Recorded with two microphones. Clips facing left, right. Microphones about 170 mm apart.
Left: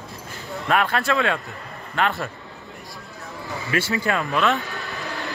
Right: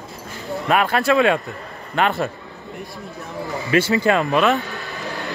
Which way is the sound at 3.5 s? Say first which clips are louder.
Right 6 dB; 20° right (ahead or behind).